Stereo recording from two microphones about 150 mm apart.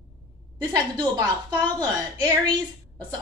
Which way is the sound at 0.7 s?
25° right (ahead or behind).